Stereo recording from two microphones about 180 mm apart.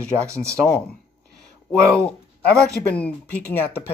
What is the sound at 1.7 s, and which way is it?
Speech, 5° left (ahead or behind).